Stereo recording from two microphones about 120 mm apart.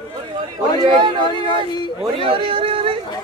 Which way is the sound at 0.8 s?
45° right (ahead or behind).